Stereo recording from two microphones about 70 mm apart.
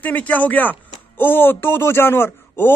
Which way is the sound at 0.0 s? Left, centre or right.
Left.